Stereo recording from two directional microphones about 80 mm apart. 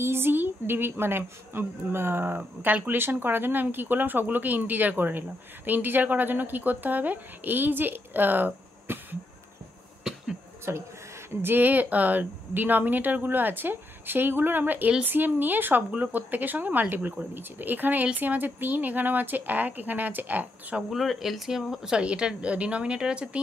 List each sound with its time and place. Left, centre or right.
0.0 s a woman's voice: right
10.7 s a man's voice: right
20.9 s speech: centre